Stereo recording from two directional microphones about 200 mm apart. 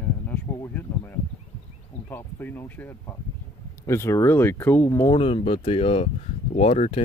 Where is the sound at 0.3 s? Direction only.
10° left (ahead or behind).